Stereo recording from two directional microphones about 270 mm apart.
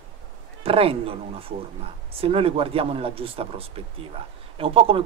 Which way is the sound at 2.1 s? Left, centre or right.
Right.